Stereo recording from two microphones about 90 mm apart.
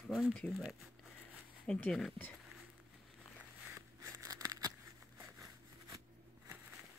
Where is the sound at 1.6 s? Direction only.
5° left (ahead or behind).